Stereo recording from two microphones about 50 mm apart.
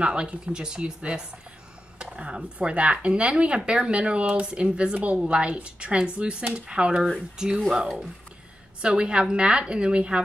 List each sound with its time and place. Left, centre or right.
0.0 s speech: right
8.8 s speech: centre